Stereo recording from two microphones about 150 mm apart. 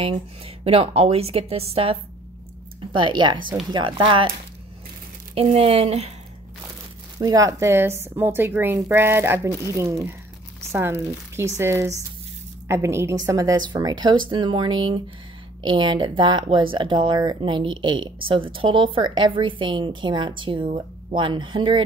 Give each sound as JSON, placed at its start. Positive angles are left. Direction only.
{"t": 0.7, "sound": "speech", "side_deg": -40}
{"t": 5.3, "sound": "speech", "side_deg": -40}
{"t": 7.2, "sound": "a woman's voice", "side_deg": -25}